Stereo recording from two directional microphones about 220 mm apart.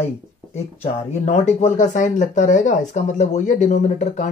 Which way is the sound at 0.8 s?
30° left (ahead or behind).